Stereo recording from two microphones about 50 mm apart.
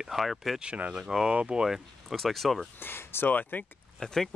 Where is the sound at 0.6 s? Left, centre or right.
Right.